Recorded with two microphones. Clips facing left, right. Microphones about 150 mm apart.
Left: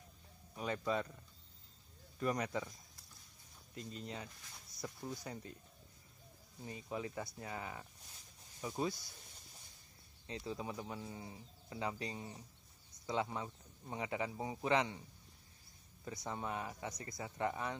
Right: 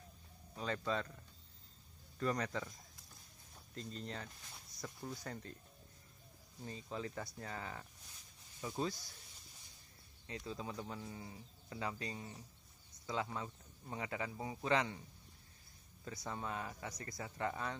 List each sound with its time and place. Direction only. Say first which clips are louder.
0.6 s speech: left 1 dB; 15° left (ahead or behind)
2.1 s speech: left 1 dB; 15° left (ahead or behind)
3.7 s speech: even; 10° left (ahead or behind)
6.6 s speech: left 1 dB; 15° left (ahead or behind)
10.4 s speech: left 2 dB; 15° left (ahead or behind)
16.3 s speech: left 1 dB; 20° left (ahead or behind)